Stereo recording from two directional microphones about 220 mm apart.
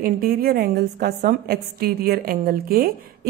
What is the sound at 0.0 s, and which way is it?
A woman's voice, 40° right (ahead or behind).